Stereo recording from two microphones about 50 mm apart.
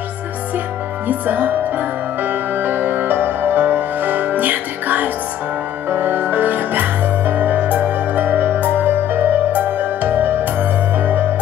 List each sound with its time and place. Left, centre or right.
1.0 s music: right